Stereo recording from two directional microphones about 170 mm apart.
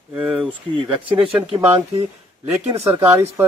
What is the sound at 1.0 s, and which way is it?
Speech, 30° right (ahead or behind).